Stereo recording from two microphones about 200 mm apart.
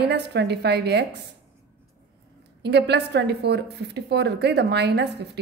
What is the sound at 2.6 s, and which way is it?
A woman's voice, 55° right (ahead or behind).